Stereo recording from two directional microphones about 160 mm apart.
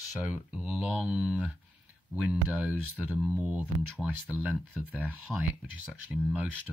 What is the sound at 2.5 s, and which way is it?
Speech, 10° right (ahead or behind).